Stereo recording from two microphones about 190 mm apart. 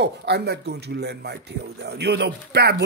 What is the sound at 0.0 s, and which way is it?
Speech, 60° right (ahead or behind).